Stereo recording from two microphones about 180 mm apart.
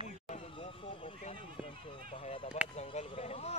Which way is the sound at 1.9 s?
30° left (ahead or behind).